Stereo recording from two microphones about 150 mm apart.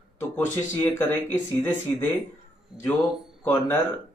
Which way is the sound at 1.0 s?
15° left (ahead or behind).